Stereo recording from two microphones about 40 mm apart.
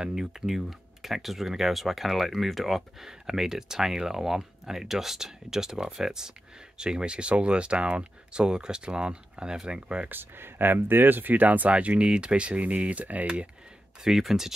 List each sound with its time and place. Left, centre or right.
0.0 s speech: centre
10.0 s speech: right
11.7 s speech: right
14.0 s speech: centre